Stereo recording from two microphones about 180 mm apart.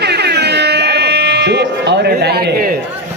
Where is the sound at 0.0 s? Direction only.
70° right (ahead or behind).